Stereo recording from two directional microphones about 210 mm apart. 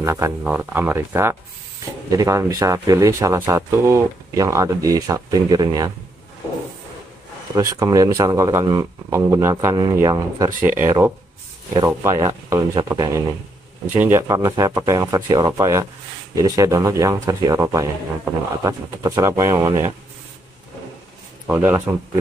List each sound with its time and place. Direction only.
0.0 s speech: 15° right (ahead or behind)
7.5 s speech: 15° right (ahead or behind)
21.5 s speech: 10° right (ahead or behind)